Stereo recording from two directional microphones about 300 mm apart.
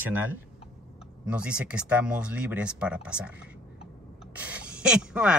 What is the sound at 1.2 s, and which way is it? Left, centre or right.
Speech, centre.